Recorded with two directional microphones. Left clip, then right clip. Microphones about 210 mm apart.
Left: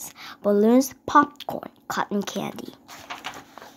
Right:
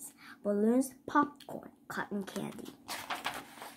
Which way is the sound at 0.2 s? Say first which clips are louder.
Left 12 dB; 40° left (ahead or behind).